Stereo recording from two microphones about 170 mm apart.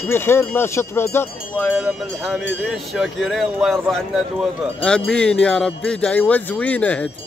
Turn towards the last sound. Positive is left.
turn(degrees=10)  # may be behind; listen again after turning